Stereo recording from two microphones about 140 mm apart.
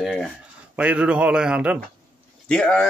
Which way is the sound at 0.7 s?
10° right (ahead or behind).